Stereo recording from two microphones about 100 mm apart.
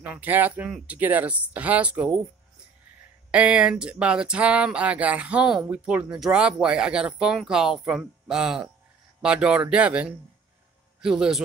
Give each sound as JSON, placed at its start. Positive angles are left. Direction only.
{"t": 0.0, "sound": "speech", "side_deg": -15}
{"t": 3.3, "sound": "a man's voice", "side_deg": -10}